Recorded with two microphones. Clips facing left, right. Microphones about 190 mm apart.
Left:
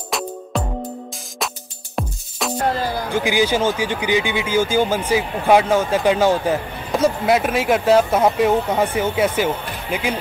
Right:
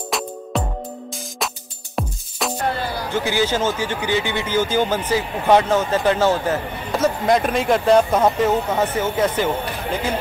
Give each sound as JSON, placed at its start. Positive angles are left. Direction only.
{"t": 0.1, "sound": "music", "side_deg": 0}
{"t": 2.0, "sound": "music", "side_deg": 0}
{"t": 2.7, "sound": "speech", "side_deg": 40}
{"t": 3.1, "sound": "speech", "side_deg": 15}